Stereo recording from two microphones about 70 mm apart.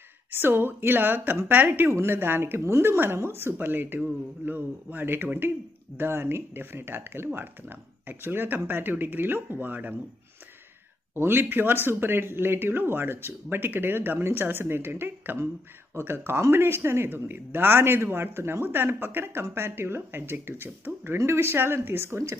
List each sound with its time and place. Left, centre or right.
0.3 s a woman's voice: right
2.6 s a woman's voice: right
11.1 s speech: right